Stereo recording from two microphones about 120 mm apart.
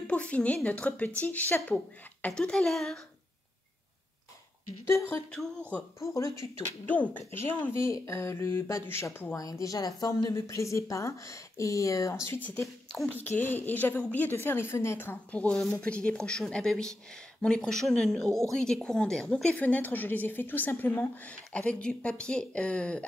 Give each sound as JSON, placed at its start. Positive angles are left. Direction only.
{"t": 0.0, "sound": "a woman's voice", "side_deg": 10}
{"t": 4.8, "sound": "speech", "side_deg": 20}
{"t": 5.3, "sound": "a woman's voice", "side_deg": 10}
{"t": 5.9, "sound": "a woman's voice", "side_deg": 25}